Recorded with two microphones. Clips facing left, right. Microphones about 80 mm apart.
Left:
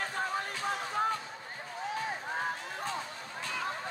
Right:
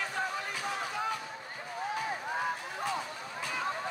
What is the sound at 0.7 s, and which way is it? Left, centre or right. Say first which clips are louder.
Music: left 3 dB; left.